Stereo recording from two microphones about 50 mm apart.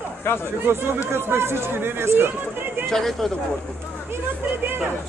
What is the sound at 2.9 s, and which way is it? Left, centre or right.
Speech, centre.